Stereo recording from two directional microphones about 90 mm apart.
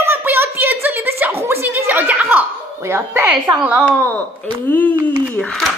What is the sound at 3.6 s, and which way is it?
Speech, 15° right (ahead or behind).